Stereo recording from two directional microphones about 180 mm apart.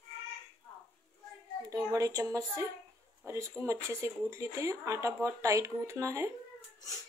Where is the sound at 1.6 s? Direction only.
20° right (ahead or behind).